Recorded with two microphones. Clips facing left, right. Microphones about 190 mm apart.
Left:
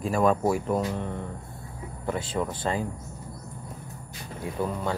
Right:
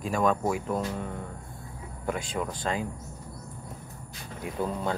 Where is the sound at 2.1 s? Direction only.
Centre (ahead or behind).